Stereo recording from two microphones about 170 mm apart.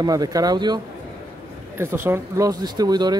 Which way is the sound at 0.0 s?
20° right (ahead or behind).